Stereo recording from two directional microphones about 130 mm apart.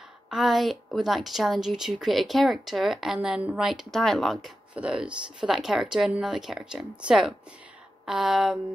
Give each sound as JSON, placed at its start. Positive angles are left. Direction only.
{"t": 0.3, "sound": "a woman's voice", "side_deg": 0}